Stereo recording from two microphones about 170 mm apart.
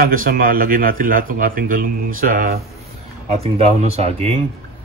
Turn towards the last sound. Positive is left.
turn(degrees=-40)  # may be behind; listen again after turning